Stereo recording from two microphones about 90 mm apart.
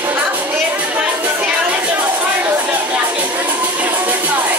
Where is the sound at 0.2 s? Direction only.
20° right (ahead or behind).